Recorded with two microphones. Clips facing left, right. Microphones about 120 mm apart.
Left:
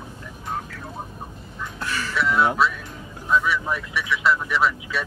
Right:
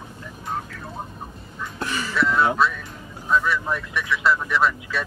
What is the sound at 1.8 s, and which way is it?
Music, 20° right (ahead or behind).